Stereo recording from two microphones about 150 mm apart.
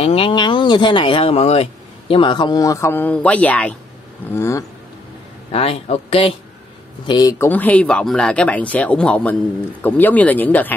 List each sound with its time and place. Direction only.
0.0 s speech: 40° left (ahead or behind); by 3.7 s 10° left (ahead or behind)
4.3 s a sound: 20° left (ahead or behind)
5.5 s speech: 40° left (ahead or behind)
7.1 s speech: 25° left (ahead or behind)